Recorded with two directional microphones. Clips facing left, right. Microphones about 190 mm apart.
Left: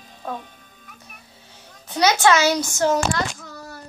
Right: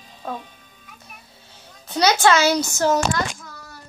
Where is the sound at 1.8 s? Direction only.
15° left (ahead or behind).